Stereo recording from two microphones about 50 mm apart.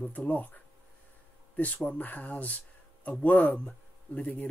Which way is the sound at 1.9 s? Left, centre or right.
Left.